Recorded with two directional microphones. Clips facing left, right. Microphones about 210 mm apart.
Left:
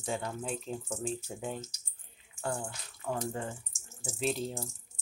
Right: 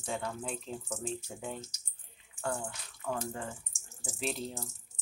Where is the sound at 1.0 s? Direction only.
35° left (ahead or behind).